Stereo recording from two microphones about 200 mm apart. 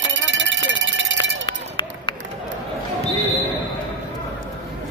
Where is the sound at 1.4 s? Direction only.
25° left (ahead or behind).